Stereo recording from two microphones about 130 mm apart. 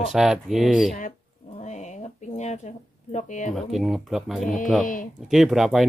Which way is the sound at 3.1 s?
70° left (ahead or behind).